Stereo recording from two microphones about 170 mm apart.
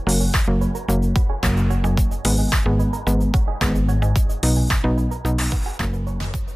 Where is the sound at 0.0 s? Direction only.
Centre (ahead or behind).